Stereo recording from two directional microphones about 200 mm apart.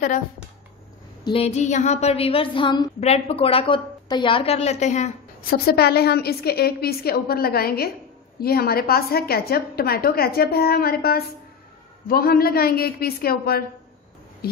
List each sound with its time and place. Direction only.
1.2 s a woman's voice: 30° left (ahead or behind)
5.5 s a woman's voice: 50° left (ahead or behind)